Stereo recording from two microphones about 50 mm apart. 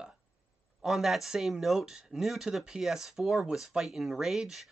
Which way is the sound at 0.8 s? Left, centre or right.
Centre.